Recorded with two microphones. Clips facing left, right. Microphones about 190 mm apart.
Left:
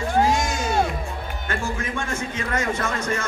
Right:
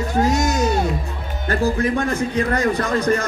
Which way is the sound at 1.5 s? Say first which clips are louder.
Right 9 dB; 35° right (ahead or behind).